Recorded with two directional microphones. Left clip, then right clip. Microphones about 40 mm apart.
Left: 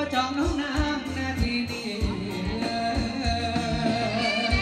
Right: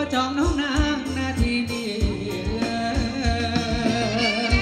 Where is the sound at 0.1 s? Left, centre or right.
Right.